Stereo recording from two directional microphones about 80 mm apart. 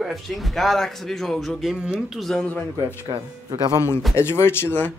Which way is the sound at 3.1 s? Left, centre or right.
Right.